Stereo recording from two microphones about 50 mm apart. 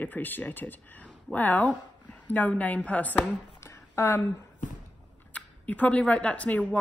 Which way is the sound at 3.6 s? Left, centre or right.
Left.